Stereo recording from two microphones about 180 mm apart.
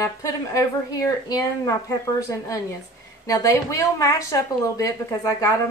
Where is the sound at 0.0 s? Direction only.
15° left (ahead or behind).